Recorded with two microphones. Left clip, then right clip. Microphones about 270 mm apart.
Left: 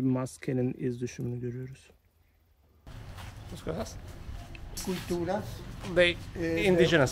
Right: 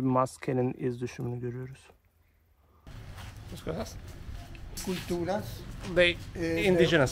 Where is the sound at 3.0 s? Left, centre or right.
Centre.